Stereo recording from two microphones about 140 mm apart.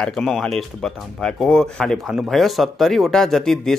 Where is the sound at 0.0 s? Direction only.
5° left (ahead or behind).